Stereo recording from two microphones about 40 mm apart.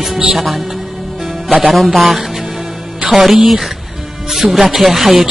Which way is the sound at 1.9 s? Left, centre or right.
Centre.